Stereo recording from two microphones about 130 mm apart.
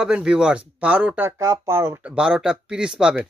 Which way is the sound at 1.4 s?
25° right (ahead or behind).